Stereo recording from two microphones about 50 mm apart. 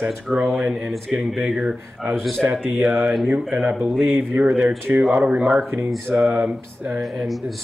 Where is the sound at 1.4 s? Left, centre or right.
Centre.